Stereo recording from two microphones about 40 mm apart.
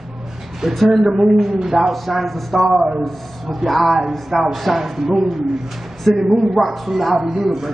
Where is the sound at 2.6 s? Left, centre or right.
Centre.